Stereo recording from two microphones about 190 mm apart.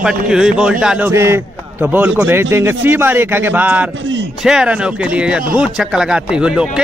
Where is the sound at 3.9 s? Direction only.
80° right.